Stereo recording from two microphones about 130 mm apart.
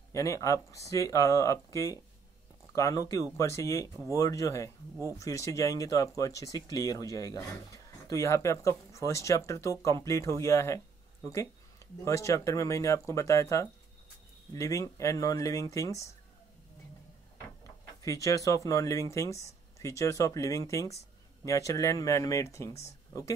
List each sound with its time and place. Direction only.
0.1 s speech: 25° left (ahead or behind)
12.0 s speech: 25° left (ahead or behind)
18.0 s speech: 25° left (ahead or behind)